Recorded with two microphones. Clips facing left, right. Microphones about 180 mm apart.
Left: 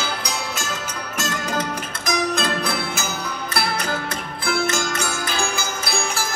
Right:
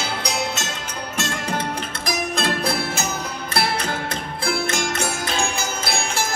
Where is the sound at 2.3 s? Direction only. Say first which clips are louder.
Right 1 dB; 30° right (ahead or behind).